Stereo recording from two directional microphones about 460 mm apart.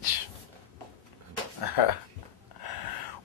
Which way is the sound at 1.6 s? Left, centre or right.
Left.